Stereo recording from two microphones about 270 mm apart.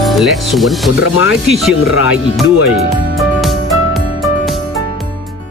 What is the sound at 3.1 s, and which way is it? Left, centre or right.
Music, centre.